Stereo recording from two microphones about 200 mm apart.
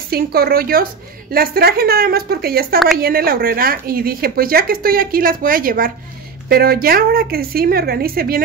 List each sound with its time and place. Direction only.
0.1 s speech: 50° right (ahead or behind)